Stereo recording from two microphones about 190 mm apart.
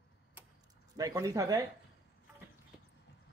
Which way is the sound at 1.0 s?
15° right (ahead or behind).